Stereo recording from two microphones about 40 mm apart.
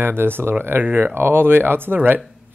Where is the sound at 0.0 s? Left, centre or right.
Right.